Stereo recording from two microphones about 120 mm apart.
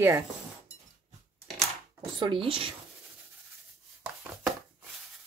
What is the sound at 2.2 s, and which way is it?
Speech, 45° right (ahead or behind).